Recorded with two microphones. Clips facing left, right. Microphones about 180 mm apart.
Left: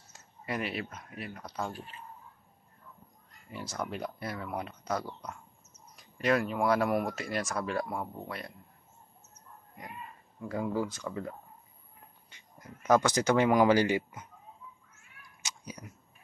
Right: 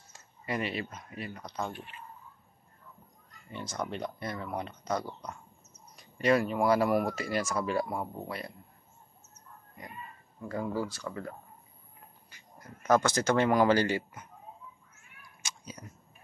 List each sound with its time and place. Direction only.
0.1 s speech: centre (ahead or behind)
1.7 s speech: 35° left (ahead or behind)
3.5 s speech: 5° left (ahead or behind)
10.5 s speech: 15° left (ahead or behind)
15.4 s cat: 15° left (ahead or behind)